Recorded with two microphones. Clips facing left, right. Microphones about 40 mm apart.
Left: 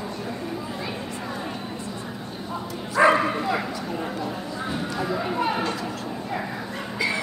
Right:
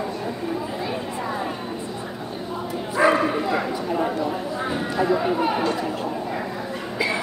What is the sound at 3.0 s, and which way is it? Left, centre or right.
Bow-wow, centre.